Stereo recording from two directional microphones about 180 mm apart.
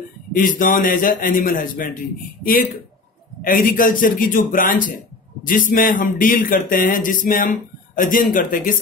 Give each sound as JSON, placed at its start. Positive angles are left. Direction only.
{"t": 0.3, "sound": "speech", "side_deg": 50}
{"t": 3.4, "sound": "speech", "side_deg": 50}